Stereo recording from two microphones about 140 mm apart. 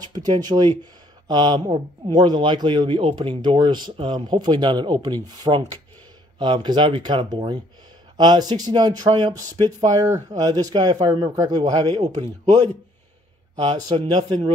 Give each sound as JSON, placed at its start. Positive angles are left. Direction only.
{"t": 0.0, "sound": "speech", "side_deg": -30}
{"t": 13.6, "sound": "speech", "side_deg": -30}